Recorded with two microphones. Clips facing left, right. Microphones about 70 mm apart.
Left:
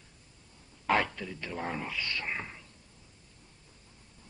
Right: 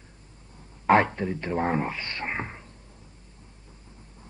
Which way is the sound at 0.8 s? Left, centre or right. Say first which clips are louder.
Right 8 dB; right.